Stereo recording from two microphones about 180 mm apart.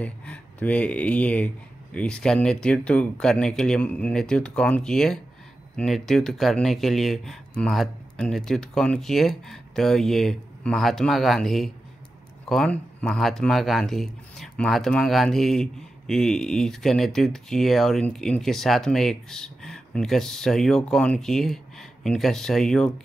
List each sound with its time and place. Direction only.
0.0 s speech: 5° left (ahead or behind)